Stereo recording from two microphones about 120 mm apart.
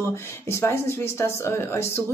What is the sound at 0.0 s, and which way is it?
Speech, 20° left (ahead or behind).